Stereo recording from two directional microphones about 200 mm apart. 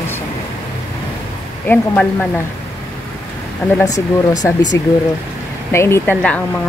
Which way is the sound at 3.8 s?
15° left (ahead or behind).